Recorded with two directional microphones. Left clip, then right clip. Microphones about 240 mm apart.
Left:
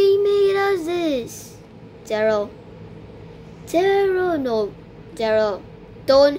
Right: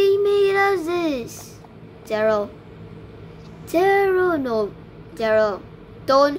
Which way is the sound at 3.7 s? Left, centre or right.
Centre.